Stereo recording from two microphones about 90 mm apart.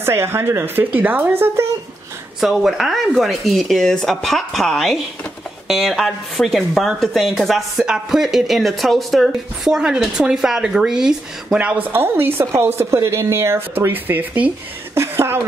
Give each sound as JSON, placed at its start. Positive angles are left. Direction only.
{"t": 0.0, "sound": "a woman's voice", "side_deg": -30}
{"t": 2.4, "sound": "speech", "side_deg": 0}
{"t": 11.9, "sound": "a woman's voice", "side_deg": -25}